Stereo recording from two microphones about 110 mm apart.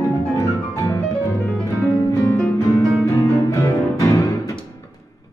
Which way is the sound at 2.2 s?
15° left (ahead or behind).